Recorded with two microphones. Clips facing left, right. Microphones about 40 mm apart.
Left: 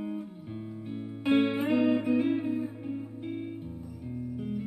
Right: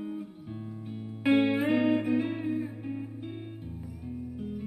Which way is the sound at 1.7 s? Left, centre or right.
Centre.